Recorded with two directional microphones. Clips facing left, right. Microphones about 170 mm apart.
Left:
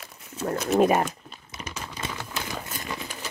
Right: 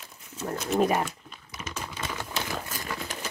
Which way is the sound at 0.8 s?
50° left (ahead or behind).